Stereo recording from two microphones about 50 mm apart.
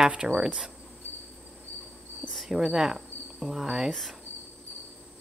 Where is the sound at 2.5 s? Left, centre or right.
Centre.